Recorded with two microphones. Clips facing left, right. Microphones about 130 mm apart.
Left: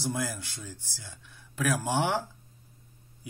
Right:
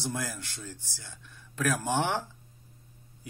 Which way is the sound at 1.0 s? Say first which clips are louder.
Even; 10° left (ahead or behind).